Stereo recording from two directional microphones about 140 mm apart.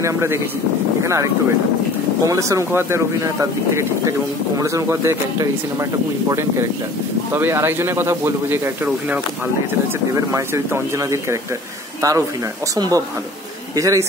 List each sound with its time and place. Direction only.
0.0 s speech: 20° right (ahead or behind)
7.3 s speech: 15° right (ahead or behind)